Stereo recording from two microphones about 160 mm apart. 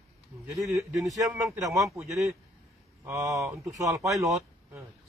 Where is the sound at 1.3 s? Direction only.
15° right (ahead or behind).